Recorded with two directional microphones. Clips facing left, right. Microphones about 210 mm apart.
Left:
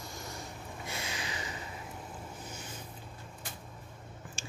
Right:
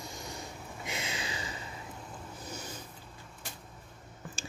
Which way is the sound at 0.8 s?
20° right (ahead or behind).